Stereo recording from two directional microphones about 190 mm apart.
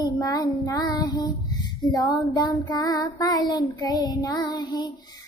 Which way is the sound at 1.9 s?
20° left (ahead or behind).